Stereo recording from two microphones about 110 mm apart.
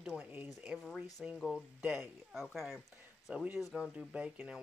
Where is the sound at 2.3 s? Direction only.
Centre (ahead or behind).